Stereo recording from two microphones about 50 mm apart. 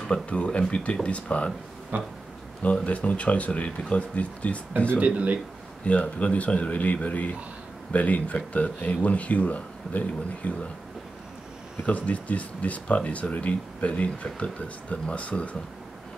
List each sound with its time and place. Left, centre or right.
0.1 s speech: left
1.9 s a sound: right
2.6 s speech: left
4.9 s a man's voice: right
5.9 s speech: left
11.8 s speech: left